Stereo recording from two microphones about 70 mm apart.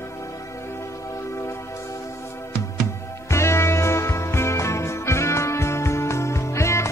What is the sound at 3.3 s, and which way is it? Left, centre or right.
Music, left.